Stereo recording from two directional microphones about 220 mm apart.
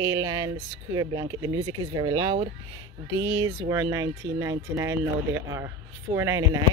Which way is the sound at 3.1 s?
15° right (ahead or behind).